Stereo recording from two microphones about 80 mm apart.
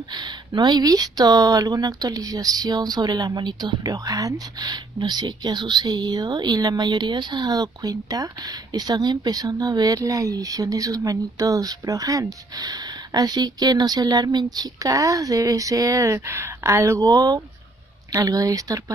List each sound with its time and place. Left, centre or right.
0.1 s a woman's voice: right
3.9 s speech: right